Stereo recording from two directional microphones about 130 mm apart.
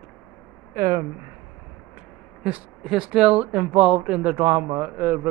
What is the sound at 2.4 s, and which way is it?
Speech, 5° right (ahead or behind).